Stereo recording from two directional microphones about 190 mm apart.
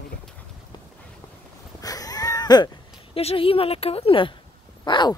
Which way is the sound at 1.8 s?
20° left (ahead or behind).